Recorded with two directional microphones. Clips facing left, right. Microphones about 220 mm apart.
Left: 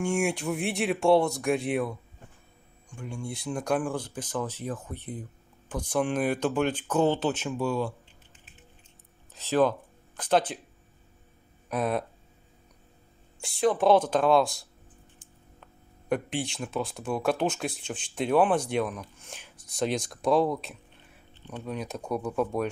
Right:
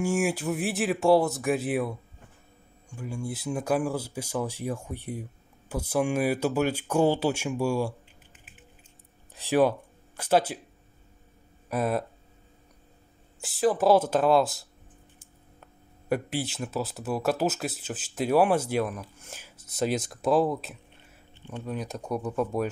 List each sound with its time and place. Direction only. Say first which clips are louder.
0.0 s speech: right 1 dB; 5° right (ahead or behind)
9.3 s speech: right 1 dB; 15° right (ahead or behind)
11.7 s speech: right 1 dB; 5° right (ahead or behind)
13.4 s speech: even; 5° right (ahead or behind)